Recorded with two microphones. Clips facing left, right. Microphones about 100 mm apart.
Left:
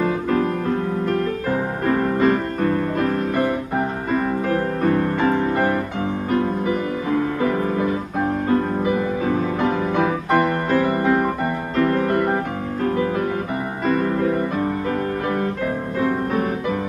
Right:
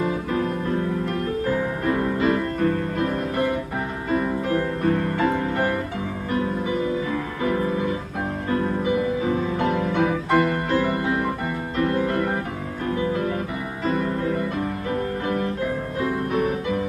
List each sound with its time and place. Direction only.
1.5 s music: 35° left (ahead or behind)
4.8 s music: 30° left (ahead or behind)
8.5 s music: 35° left (ahead or behind)
13.8 s music: 45° left (ahead or behind)